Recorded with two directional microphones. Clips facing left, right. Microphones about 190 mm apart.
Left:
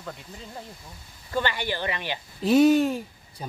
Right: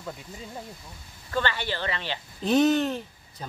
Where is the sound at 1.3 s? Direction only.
15° left (ahead or behind).